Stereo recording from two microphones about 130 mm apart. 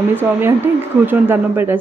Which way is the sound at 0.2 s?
15° right (ahead or behind).